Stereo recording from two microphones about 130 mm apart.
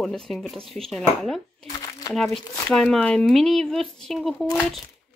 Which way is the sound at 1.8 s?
30° left (ahead or behind).